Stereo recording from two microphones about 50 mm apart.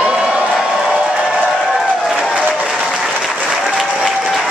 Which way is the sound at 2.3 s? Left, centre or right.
Right.